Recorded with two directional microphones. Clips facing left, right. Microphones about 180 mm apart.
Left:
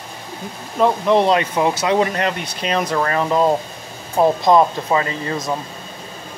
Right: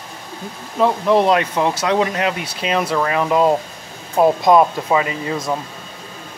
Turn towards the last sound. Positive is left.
turn(degrees=-10)  # may be behind; listen again after turning